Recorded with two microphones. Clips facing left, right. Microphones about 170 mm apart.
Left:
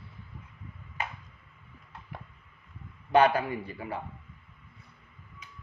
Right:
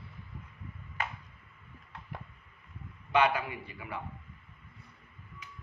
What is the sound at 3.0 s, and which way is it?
Speech, 40° left (ahead or behind).